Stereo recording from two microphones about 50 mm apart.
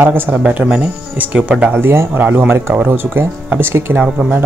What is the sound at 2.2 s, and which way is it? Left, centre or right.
Speech, right.